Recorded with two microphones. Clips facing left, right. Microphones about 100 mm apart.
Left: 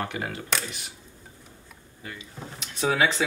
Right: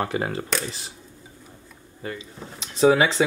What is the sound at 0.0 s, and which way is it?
Speech, 30° right (ahead or behind).